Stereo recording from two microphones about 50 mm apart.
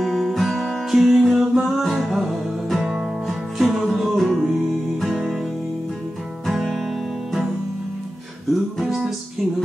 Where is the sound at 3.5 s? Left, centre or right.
Centre.